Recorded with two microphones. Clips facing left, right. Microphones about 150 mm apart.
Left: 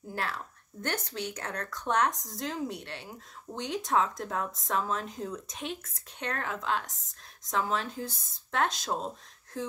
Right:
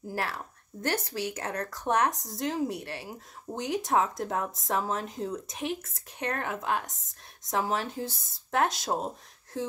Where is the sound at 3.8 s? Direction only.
25° right (ahead or behind).